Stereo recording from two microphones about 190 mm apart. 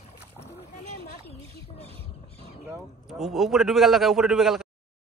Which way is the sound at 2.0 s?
60° left (ahead or behind).